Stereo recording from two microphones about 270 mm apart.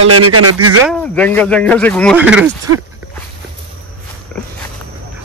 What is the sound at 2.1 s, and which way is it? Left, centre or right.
Speech, centre.